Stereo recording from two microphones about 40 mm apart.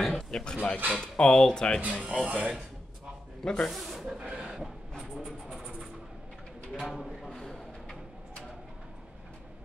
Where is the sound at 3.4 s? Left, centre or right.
Centre.